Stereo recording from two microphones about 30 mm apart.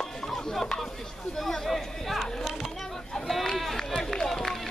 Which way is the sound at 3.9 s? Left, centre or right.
Centre.